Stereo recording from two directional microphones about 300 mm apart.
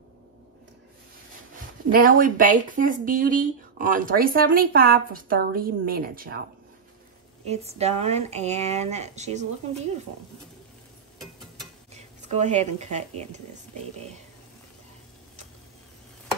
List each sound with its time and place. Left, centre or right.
1.9 s speech: right
7.4 s speech: right
11.9 s speech: right